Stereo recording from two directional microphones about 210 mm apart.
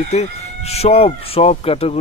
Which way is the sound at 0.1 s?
30° left (ahead or behind).